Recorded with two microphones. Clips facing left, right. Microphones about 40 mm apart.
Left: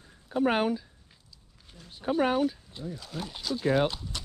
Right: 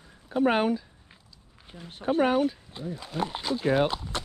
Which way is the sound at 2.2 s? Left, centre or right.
Centre.